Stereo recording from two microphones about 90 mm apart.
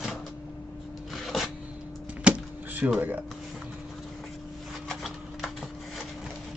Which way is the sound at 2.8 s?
20° right (ahead or behind).